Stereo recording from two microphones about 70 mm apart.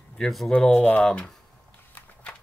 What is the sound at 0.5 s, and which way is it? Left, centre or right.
Speech, left.